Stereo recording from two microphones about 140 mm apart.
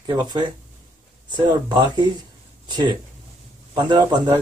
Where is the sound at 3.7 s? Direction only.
30° right (ahead or behind).